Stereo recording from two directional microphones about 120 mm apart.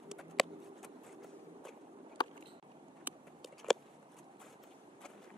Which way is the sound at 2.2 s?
40° left (ahead or behind).